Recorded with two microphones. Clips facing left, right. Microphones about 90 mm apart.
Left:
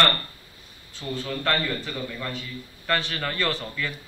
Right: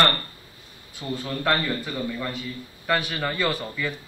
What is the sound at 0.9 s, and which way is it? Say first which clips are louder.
A man's voice: right 1 dB; 10° right (ahead or behind).